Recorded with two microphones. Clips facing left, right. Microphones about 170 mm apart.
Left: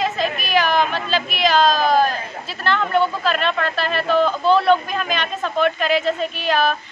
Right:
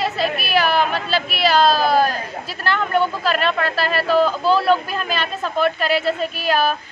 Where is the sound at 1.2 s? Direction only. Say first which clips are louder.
Right 1 dB; 40° right (ahead or behind).